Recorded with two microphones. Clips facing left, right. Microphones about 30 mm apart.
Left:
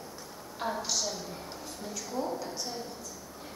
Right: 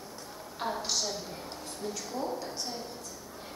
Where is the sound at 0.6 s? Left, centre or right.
Centre.